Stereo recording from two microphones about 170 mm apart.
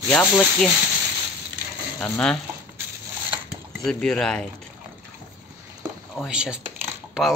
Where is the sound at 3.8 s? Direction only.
5° left (ahead or behind).